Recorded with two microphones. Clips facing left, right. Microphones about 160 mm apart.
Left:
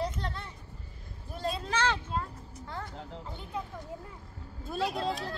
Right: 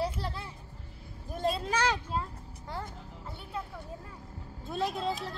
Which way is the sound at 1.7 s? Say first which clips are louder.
Even; 10° right (ahead or behind).